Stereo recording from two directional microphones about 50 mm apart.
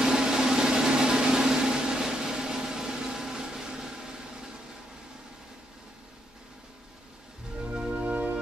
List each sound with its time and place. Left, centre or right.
0.0 s vehicle: centre
7.9 s music: right